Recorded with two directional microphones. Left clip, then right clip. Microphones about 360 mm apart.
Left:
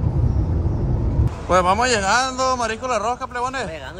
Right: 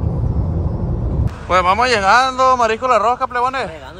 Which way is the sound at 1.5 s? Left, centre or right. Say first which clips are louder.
Right 3 dB; centre.